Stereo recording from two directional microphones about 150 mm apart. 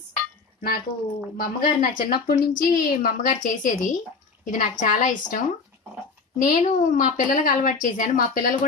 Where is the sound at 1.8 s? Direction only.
75° left (ahead or behind).